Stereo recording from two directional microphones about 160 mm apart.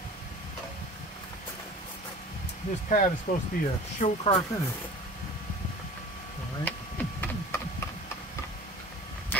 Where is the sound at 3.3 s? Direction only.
60° left (ahead or behind).